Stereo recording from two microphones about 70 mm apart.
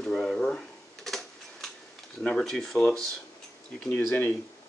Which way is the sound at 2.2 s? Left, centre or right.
Centre.